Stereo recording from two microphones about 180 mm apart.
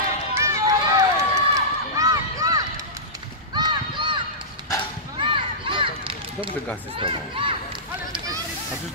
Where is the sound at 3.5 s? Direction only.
25° right (ahead or behind).